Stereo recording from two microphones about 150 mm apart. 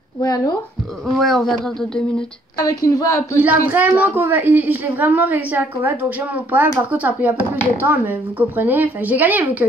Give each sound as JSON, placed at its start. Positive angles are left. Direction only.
{"t": 0.2, "sound": "a woman's voice", "side_deg": 25}
{"t": 1.1, "sound": "speech", "side_deg": 0}
{"t": 2.5, "sound": "a woman's voice", "side_deg": 25}
{"t": 3.3, "sound": "a woman's voice", "side_deg": -15}